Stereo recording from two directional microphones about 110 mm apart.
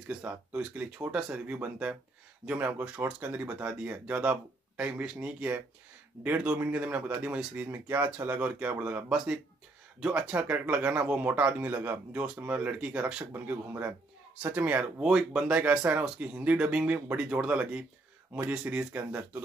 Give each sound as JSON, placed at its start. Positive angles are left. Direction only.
{"t": 0.1, "sound": "speech", "side_deg": -15}